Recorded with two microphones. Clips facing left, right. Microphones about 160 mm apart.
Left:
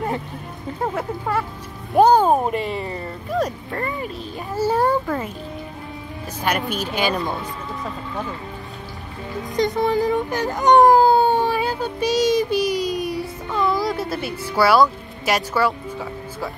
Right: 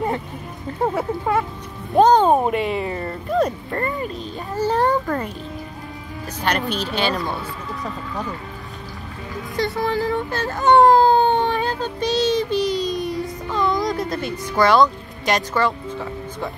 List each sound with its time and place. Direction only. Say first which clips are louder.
0.8 s speech: right 3 dB; 15° right (ahead or behind)
2.0 s a child's voice: even; 10° left (ahead or behind)
6.7 s a child's voice: even; 10° left (ahead or behind)
9.6 s whimper: left 3 dB; 20° left (ahead or behind)